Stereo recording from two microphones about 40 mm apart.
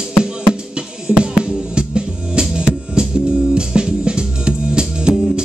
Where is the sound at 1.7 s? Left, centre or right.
Right.